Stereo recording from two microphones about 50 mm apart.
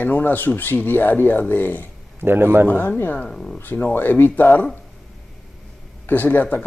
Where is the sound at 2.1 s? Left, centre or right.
Right.